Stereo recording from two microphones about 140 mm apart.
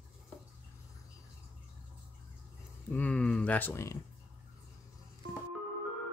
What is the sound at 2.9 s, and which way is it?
Speech, 10° left (ahead or behind).